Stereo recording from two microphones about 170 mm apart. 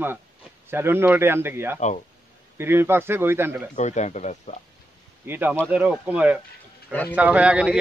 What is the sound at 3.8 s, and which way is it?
Speech, 45° left (ahead or behind).